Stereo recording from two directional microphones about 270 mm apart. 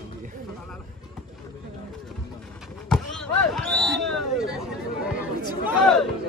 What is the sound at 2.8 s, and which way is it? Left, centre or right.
Basketball bounce, centre.